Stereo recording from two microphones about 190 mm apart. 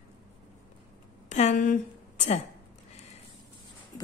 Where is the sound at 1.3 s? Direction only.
40° left (ahead or behind).